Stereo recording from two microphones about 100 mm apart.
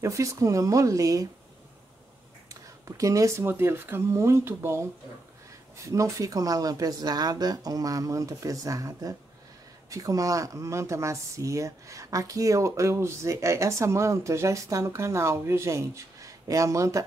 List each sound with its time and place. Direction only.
0.0 s speech: 30° right (ahead or behind)
3.0 s speech: 35° right (ahead or behind)